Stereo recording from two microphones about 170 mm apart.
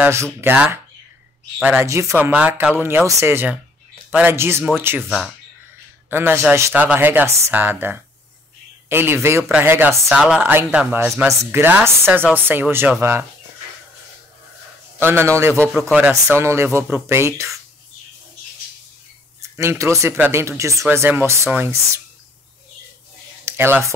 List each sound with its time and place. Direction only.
0.0 s speech: 15° right (ahead or behind)
15.0 s speech: 15° right (ahead or behind)
19.4 s speech: 15° right (ahead or behind)
23.4 s a sound: 15° right (ahead or behind)